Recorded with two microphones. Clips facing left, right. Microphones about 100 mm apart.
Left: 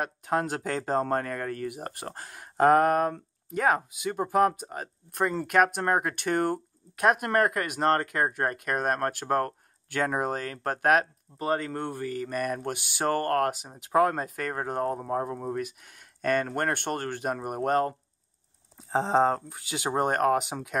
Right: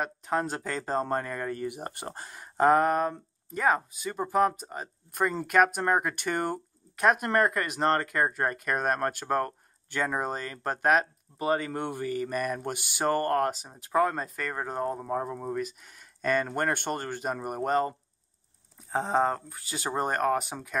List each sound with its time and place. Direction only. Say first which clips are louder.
0.0 s speech: left 1 dB; 10° left (ahead or behind)
1.0 s speech: left 2 dB; 5° right (ahead or behind)
11.3 s speech: right 1 dB; 10° right (ahead or behind)
13.5 s speech: left 2 dB; 10° left (ahead or behind)
19.2 s speech: left 3 dB; 15° left (ahead or behind)